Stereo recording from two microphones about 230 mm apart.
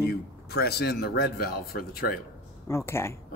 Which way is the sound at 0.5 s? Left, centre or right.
Left.